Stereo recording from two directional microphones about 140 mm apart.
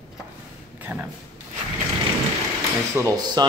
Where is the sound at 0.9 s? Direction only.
10° right (ahead or behind).